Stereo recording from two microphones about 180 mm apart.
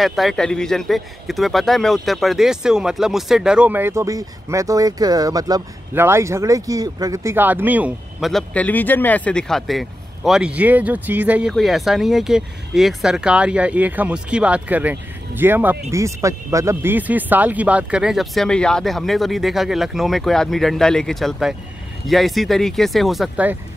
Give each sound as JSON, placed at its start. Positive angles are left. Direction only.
{"t": 0.0, "sound": "a man's voice", "side_deg": 0}